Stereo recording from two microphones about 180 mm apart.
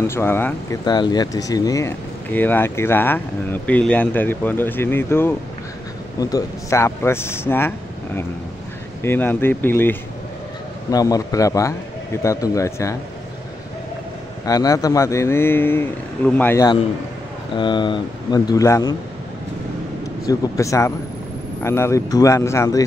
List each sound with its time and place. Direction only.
0.0 s speech: 15° left (ahead or behind)
0.8 s speech: 25° left (ahead or behind)
9.0 s speech: 10° left (ahead or behind)
14.4 s speech: 20° left (ahead or behind)
17.6 s speech: 25° left (ahead or behind)
20.2 s speech: 15° left (ahead or behind)